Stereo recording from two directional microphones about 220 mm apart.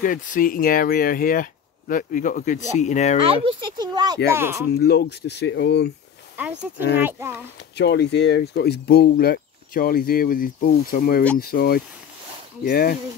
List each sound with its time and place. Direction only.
0.0 s speech: 35° left (ahead or behind)
3.3 s a child's voice: 20° right (ahead or behind)
4.7 s speech: 45° left (ahead or behind)
6.3 s a child's voice: 5° right (ahead or behind)
7.7 s speech: 50° left (ahead or behind)